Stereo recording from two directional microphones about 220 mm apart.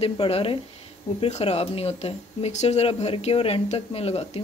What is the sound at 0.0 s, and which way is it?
A woman's voice, 25° left (ahead or behind).